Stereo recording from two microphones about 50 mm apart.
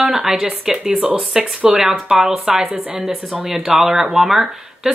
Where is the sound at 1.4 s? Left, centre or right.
Right.